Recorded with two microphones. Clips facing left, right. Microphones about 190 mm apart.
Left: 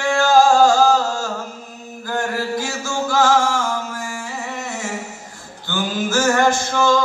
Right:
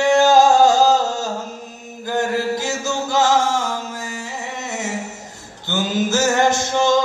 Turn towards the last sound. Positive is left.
turn(degrees=-20)  # may be behind; listen again after turning